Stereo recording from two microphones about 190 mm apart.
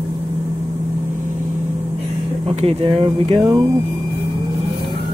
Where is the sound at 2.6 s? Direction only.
30° right (ahead or behind).